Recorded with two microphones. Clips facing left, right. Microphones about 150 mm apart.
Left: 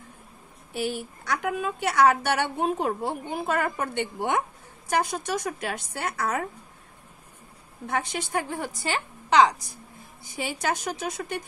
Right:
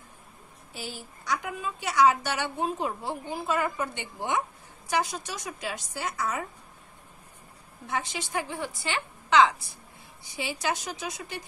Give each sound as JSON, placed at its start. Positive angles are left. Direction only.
{"t": 0.7, "sound": "a woman's voice", "side_deg": 60}
{"t": 7.8, "sound": "a woman's voice", "side_deg": 55}